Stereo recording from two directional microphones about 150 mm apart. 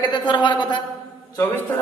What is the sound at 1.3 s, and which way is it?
Speech, 10° left (ahead or behind).